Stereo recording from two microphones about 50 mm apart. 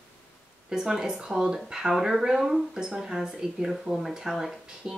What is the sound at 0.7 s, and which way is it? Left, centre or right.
Speech, centre.